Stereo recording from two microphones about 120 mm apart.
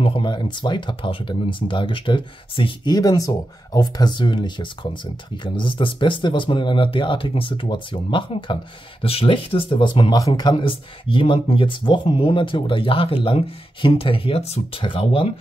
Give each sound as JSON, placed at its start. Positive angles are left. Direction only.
{"t": 0.0, "sound": "speech", "side_deg": 45}
{"t": 10.1, "sound": "speech", "side_deg": 30}
{"t": 10.5, "sound": "speech", "side_deg": 45}